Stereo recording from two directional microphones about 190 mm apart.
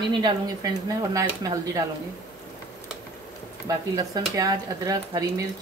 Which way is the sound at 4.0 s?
20° right (ahead or behind).